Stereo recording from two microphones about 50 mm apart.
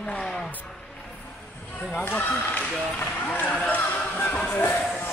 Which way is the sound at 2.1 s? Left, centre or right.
Left.